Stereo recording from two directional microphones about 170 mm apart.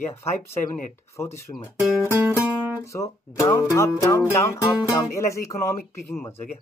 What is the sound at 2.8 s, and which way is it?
Music, 15° left (ahead or behind).